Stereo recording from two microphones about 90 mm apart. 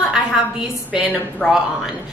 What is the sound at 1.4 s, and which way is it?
Speech, 15° left (ahead or behind).